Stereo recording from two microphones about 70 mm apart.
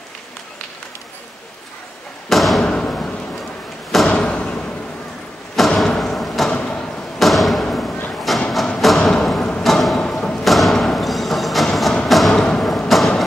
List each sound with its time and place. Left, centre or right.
2.2 s thump: centre
2.6 s thump: centre
4.1 s thump: centre
5.9 s thump: centre
6.5 s a sound: centre
7.2 s a sound: centre